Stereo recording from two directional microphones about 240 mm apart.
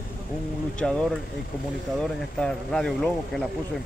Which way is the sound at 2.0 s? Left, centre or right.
Centre.